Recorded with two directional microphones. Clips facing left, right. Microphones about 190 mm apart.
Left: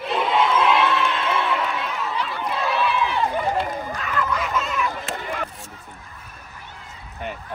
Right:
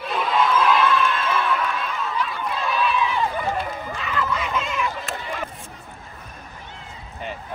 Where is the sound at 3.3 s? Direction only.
20° left (ahead or behind).